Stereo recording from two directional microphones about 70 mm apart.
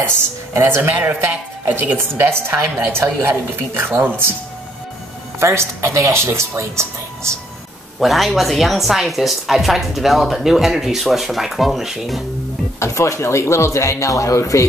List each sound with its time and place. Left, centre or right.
0.6 s a woman's voice: right
2.0 s speech: right
5.4 s speech: right
8.0 s speech: centre
12.7 s speech: left